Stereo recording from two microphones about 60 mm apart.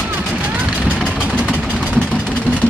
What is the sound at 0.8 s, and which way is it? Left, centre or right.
Vehicle, centre.